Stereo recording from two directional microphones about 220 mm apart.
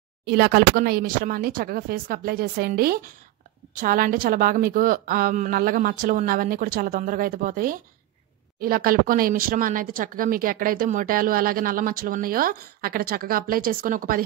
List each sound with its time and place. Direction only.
0.2 s a woman's voice: 45° right (ahead or behind)